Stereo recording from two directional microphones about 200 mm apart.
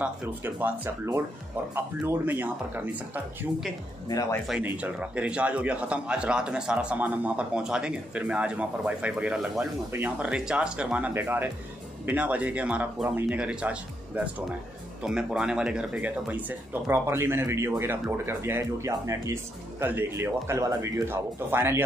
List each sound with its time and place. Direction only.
0.0 s speech: 10° right (ahead or behind)
4.1 s speech: 15° left (ahead or behind)
4.5 s a man's voice: 5° right (ahead or behind)